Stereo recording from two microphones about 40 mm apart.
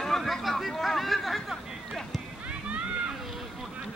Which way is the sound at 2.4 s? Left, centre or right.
Right.